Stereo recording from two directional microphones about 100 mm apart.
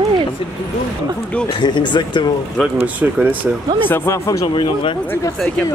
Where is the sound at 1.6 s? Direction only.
50° left (ahead or behind).